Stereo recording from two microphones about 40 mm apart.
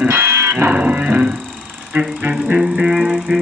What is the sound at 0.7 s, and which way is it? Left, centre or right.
Music, right.